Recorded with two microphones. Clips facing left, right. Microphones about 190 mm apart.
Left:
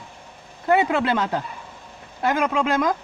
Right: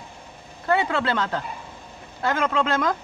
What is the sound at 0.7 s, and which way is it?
Speech, 20° left (ahead or behind).